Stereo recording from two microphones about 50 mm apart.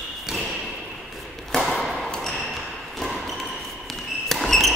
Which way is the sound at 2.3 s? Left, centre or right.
Centre.